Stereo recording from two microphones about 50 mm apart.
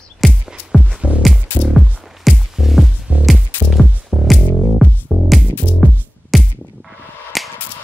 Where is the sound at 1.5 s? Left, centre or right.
Left.